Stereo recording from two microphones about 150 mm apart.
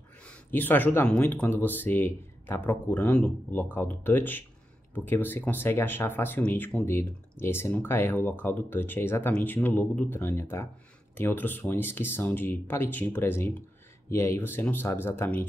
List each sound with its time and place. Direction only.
0.2 s speech: 10° left (ahead or behind)